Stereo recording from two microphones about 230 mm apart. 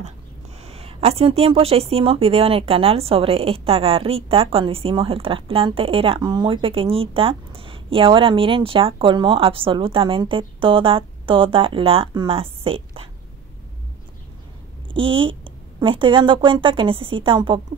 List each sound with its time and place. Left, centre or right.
0.7 s speech: right
15.0 s speech: right